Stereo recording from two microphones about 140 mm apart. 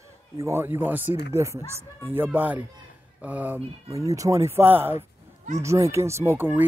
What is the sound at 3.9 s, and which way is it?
Speech, 25° right (ahead or behind).